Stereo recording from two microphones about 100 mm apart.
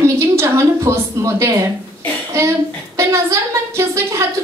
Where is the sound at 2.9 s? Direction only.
30° right (ahead or behind).